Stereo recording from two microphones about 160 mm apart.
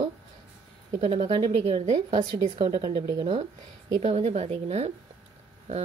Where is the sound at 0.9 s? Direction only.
35° right (ahead or behind).